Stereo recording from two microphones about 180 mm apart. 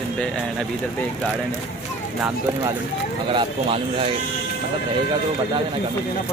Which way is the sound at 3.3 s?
30° right (ahead or behind).